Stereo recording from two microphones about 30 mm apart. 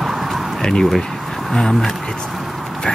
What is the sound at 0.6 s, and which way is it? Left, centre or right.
Speech, left.